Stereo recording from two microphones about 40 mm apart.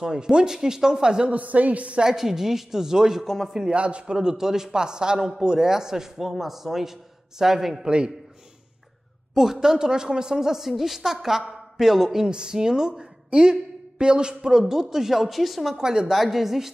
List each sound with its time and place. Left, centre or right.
0.0 s a woman's voice: centre
1.3 s a man's voice: right
2.1 s a woman's voice: centre
3.3 s a man's voice: centre
3.7 s speech: right
4.2 s a woman's voice: centre
7.8 s speech: right
9.3 s a woman's voice: centre
15.8 s speech: centre
16.1 s a woman's voice: centre